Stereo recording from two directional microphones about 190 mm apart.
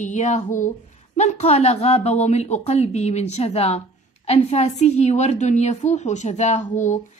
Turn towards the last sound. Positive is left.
turn(degrees=40)  # may be behind; listen again after turning